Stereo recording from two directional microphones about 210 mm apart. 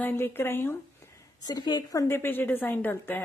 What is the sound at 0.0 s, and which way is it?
A woman's voice, 10° left (ahead or behind).